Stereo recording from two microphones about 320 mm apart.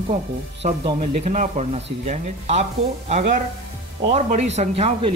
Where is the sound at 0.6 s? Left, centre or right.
Centre.